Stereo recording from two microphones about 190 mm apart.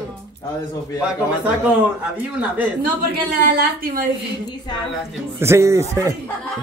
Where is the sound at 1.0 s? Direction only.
10° right (ahead or behind).